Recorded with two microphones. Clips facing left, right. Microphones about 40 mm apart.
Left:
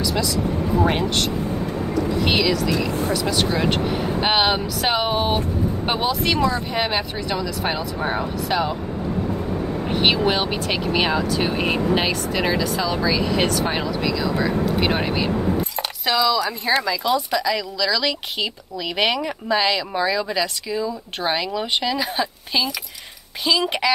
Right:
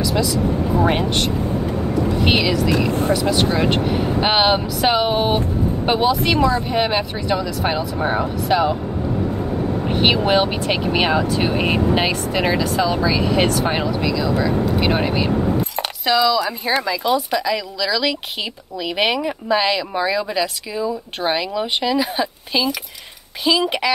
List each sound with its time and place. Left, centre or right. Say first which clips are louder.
0.0 s a sound: right 3 dB; centre
2.2 s speech: right 2 dB; right
2.7 s speech: right 4 dB; right
3.1 s speech: right 4 dB; right
4.2 s speech: right 3 dB; centre
5.9 s speech: right 5 dB; centre
10.1 s speech: right 3 dB; right
14.3 s speech: right 2 dB; centre
16.7 s speech: right 1 dB; centre